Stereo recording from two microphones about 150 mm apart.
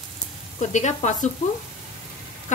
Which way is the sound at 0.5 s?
55° left (ahead or behind).